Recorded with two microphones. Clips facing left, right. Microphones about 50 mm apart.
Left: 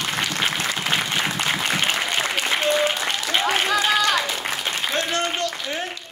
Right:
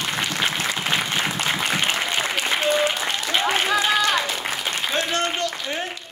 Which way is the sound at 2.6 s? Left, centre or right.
Centre.